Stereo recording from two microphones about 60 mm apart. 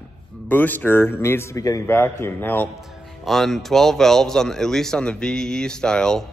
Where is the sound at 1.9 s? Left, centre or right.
Left.